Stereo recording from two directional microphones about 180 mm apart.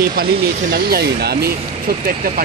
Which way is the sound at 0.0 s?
55° right (ahead or behind).